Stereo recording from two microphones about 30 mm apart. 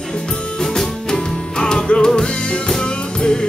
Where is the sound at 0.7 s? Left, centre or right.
Centre.